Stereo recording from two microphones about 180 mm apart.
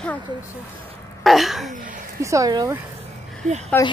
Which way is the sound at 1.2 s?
Centre (ahead or behind).